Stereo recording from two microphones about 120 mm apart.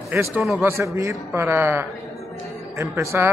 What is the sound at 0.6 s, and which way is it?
A man's voice, 25° right (ahead or behind).